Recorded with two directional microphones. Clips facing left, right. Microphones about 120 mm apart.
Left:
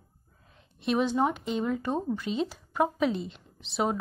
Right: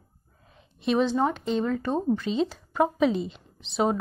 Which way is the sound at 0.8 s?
10° left (ahead or behind).